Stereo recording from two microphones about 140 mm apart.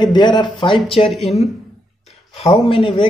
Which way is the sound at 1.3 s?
45° left (ahead or behind).